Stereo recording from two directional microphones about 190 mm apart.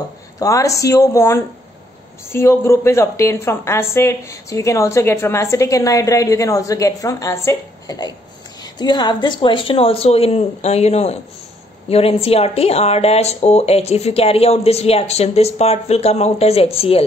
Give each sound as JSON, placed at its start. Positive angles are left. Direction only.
{"t": 0.4, "sound": "a woman's voice", "side_deg": 15}